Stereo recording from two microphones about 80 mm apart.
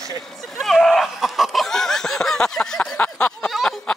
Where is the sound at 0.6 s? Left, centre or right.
Centre.